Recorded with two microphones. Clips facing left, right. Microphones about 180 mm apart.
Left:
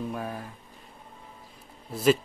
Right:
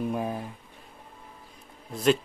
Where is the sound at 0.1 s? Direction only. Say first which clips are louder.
Right 4 dB; 20° right (ahead or behind).